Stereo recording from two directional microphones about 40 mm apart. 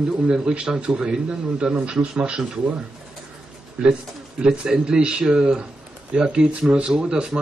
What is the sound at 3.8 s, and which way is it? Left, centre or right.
A man's voice, right.